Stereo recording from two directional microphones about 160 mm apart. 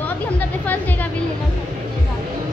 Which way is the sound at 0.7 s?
10° left (ahead or behind).